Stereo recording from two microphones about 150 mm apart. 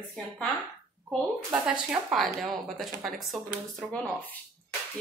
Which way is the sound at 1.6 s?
Centre (ahead or behind).